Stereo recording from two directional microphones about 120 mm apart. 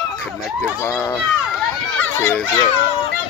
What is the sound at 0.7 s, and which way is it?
Speech, 20° left (ahead or behind).